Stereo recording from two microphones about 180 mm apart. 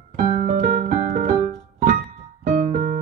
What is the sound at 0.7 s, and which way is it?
Piano, 50° right (ahead or behind).